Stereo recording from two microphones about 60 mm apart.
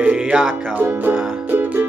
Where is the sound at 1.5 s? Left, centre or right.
Right.